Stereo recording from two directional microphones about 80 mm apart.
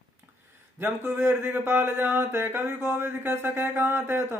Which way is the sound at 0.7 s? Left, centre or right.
Right.